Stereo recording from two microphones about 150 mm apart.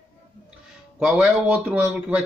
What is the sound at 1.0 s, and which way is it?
Speech, 5° right (ahead or behind).